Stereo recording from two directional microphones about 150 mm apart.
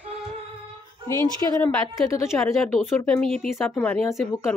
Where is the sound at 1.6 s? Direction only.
20° left (ahead or behind).